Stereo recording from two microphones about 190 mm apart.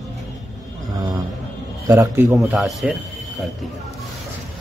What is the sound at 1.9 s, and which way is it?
Speech, 15° right (ahead or behind).